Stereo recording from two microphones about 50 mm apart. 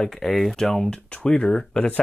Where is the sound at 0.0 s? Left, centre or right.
Centre.